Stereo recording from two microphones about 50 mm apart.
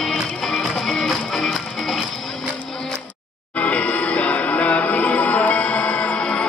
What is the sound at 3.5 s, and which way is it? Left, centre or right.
Music, left.